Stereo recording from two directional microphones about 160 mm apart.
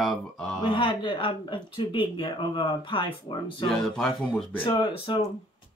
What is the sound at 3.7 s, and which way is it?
Speech, 5° left (ahead or behind).